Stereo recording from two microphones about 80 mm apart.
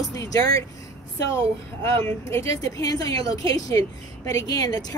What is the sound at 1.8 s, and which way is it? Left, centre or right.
A woman's voice, left.